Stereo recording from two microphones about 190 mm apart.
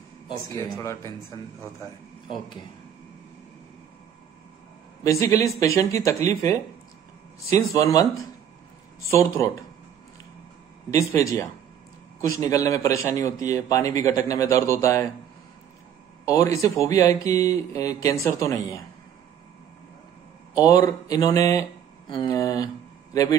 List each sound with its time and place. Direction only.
0.3 s a man's voice: 15° left (ahead or behind)
5.2 s a man's voice: 15° left (ahead or behind)
9.1 s a man's voice: 15° left (ahead or behind)
10.9 s a man's voice: 15° left (ahead or behind)
16.3 s a man's voice: 15° left (ahead or behind)
20.5 s speech: 20° left (ahead or behind)